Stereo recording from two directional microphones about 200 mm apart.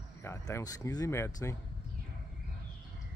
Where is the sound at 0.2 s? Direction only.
15° left (ahead or behind).